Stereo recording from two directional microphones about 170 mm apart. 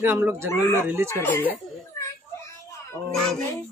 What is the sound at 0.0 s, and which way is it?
Speech, 15° right (ahead or behind).